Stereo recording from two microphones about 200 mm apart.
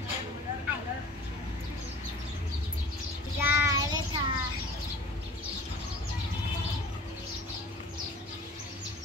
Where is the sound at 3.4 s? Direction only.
10° right (ahead or behind).